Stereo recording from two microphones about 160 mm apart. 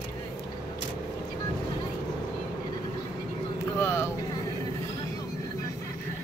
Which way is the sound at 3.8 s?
15° left (ahead or behind).